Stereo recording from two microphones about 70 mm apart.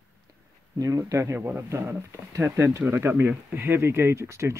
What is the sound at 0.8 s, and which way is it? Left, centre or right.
Speech, right.